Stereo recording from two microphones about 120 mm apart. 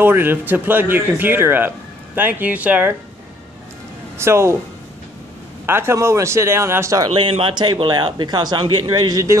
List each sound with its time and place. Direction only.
0.0 s speech: 15° right (ahead or behind)
4.2 s speech: 20° right (ahead or behind)
5.7 s speech: 20° right (ahead or behind)
7.2 s a man's voice: 50° right (ahead or behind); by 9.4 s 30° right (ahead or behind)